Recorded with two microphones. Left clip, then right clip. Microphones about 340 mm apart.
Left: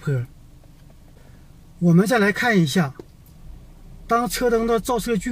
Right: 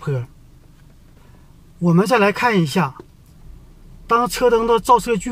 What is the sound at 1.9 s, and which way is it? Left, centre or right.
Speech, centre.